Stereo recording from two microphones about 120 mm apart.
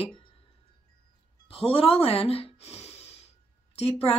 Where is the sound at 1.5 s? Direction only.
55° left (ahead or behind).